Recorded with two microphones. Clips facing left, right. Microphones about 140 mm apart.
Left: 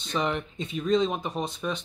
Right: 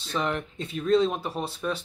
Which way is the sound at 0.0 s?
Centre (ahead or behind).